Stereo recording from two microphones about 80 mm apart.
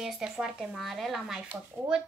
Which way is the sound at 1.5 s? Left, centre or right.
Right.